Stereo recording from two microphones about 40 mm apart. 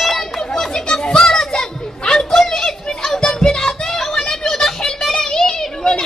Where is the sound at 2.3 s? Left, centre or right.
Centre.